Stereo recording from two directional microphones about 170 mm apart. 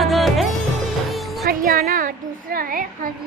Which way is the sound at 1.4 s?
60° right (ahead or behind).